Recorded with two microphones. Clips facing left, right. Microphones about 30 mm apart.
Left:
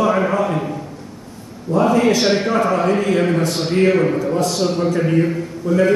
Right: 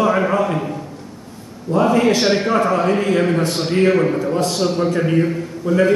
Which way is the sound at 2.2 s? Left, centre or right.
Centre.